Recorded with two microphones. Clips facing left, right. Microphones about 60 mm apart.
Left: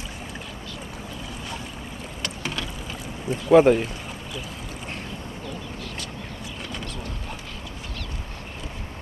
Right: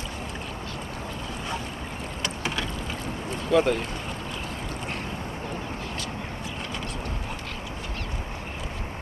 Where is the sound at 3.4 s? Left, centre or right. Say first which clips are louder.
Left 7 dB; left.